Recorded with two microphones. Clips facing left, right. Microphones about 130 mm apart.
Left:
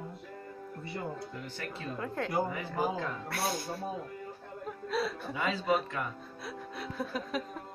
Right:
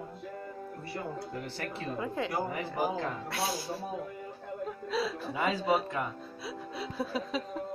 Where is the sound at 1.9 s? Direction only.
5° right (ahead or behind).